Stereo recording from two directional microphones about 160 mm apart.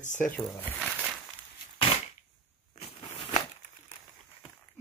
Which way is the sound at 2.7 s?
40° left (ahead or behind).